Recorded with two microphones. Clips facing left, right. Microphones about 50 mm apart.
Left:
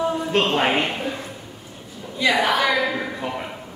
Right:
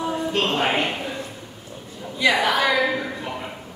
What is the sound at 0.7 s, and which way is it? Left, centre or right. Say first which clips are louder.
Speech: left 1 dB; centre.